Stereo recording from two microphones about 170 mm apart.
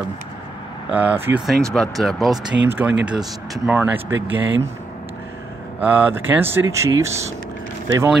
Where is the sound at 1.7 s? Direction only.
Centre (ahead or behind).